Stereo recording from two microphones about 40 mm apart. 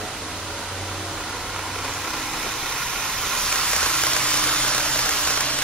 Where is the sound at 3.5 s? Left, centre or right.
Left.